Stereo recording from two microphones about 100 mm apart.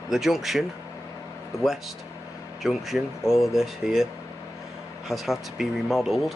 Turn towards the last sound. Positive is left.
turn(degrees=0)  # may be behind; listen again after turning